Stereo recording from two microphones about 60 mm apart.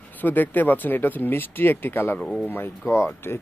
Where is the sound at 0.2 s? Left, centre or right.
Left.